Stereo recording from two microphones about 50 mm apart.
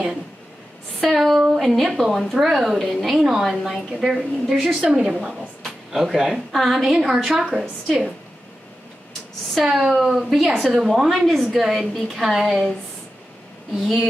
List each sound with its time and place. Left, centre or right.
1.0 s speech: centre
4.8 s a woman's voice: centre
5.9 s speech: centre
9.5 s speech: centre
13.7 s speech: centre